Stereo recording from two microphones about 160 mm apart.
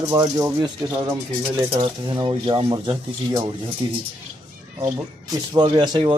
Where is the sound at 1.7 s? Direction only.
35° right (ahead or behind).